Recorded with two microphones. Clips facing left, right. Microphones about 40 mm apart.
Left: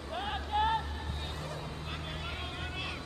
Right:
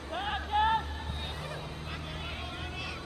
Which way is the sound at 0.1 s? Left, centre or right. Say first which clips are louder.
Right 3 dB; centre.